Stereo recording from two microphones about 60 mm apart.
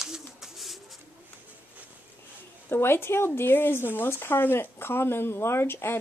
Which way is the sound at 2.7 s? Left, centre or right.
Left.